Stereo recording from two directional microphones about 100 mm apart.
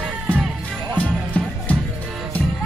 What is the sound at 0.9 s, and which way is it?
Music, 15° left (ahead or behind).